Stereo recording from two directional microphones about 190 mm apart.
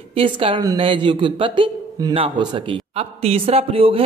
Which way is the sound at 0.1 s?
30° right (ahead or behind).